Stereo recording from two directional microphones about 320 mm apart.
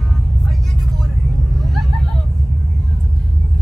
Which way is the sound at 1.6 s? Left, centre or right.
Centre.